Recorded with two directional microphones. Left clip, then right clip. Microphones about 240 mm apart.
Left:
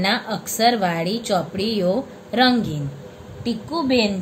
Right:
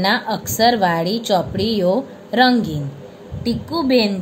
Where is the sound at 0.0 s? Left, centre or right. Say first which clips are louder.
Right 4 dB; centre.